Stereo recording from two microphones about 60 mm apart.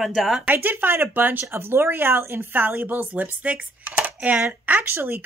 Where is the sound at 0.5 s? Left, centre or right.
Right.